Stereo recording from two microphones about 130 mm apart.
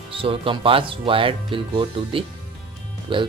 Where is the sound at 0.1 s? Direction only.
45° right (ahead or behind).